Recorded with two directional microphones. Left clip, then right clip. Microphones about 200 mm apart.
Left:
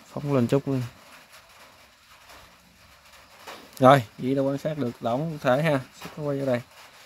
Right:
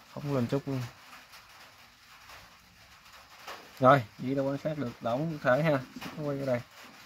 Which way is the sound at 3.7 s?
35° left (ahead or behind).